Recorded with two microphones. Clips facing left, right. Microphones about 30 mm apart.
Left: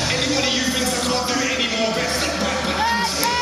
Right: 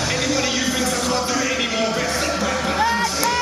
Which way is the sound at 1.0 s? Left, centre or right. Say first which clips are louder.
Even; left.